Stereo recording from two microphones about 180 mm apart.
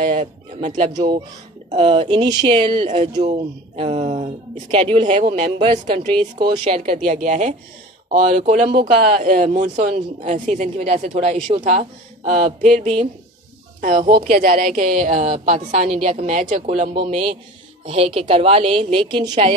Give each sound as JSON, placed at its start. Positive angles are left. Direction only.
{"t": 0.1, "sound": "speech", "side_deg": -40}
{"t": 0.9, "sound": "speech", "side_deg": -25}
{"t": 6.6, "sound": "speech", "side_deg": -40}
{"t": 12.3, "sound": "speech", "side_deg": -45}
{"t": 16.9, "sound": "speech", "side_deg": -30}